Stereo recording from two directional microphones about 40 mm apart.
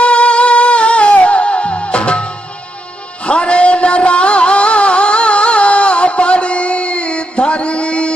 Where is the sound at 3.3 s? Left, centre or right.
Left.